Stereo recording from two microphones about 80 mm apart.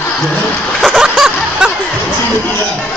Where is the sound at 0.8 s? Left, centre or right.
Centre.